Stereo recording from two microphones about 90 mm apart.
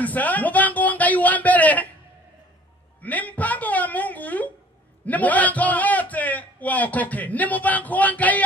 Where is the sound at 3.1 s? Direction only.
15° left (ahead or behind).